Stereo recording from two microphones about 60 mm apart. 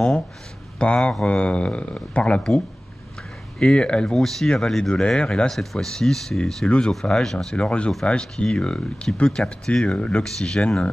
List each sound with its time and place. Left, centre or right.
0.7 s speech: centre
3.5 s speech: centre
7.5 s speech: centre